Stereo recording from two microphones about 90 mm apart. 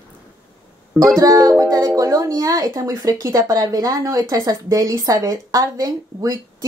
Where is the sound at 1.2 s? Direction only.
40° right (ahead or behind).